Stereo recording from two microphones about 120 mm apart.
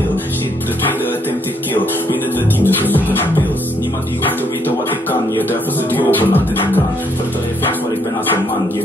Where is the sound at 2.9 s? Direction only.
15° left (ahead or behind).